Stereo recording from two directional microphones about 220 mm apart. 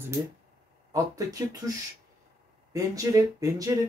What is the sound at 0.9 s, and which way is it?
Speech, 15° right (ahead or behind).